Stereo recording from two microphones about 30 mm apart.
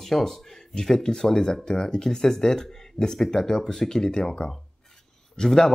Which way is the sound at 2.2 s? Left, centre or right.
Centre.